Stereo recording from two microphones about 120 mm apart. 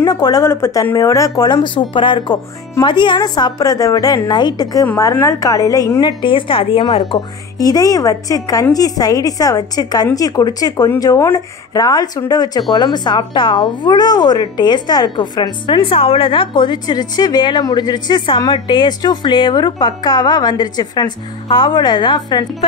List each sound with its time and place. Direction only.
0.0 s a woman's voice: 35° left (ahead or behind)
0.4 s a woman's voice: 20° left (ahead or behind)
4.9 s a woman's voice: 25° left (ahead or behind)